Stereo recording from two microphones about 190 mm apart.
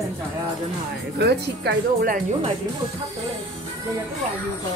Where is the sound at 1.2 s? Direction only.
60° right (ahead or behind).